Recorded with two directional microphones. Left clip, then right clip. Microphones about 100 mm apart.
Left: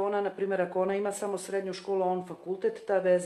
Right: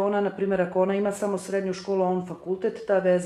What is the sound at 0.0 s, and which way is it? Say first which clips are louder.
Speech: right 5 dB; 30° left (ahead or behind).